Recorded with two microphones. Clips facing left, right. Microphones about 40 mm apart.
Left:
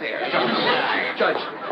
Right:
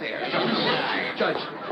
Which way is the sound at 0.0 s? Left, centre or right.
Centre.